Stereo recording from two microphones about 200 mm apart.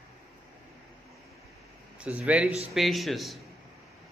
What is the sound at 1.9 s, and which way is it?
A man's voice, 5° right (ahead or behind).